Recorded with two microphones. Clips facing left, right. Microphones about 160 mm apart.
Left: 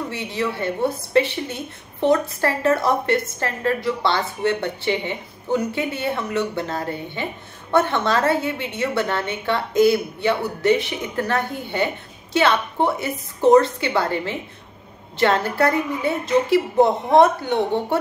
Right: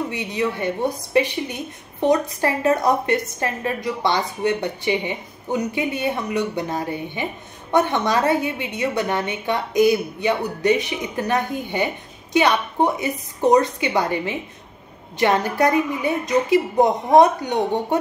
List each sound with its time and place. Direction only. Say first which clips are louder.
0.1 s a woman's voice: right 1 dB; 15° right (ahead or behind)